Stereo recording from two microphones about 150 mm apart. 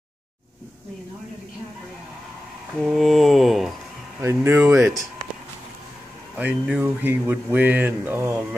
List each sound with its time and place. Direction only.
2.8 s mantra: centre (ahead or behind)
4.2 s speech: 15° right (ahead or behind)
6.3 s speech: 10° right (ahead or behind)